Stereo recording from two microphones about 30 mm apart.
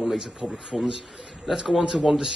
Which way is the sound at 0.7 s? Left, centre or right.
Centre.